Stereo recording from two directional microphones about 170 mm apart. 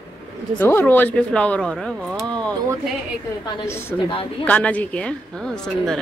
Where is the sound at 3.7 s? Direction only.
15° left (ahead or behind).